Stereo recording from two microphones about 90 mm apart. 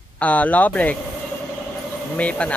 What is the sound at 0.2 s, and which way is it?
Speech, 15° left (ahead or behind).